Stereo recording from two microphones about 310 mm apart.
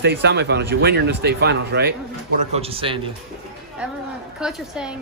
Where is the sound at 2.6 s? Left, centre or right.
Centre.